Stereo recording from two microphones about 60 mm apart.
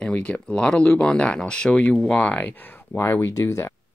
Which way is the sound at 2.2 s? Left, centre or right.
Left.